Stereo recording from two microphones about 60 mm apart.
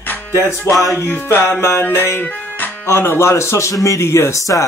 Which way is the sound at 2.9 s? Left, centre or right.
Left.